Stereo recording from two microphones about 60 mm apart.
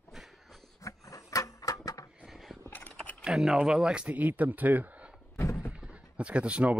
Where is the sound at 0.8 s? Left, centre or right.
Left.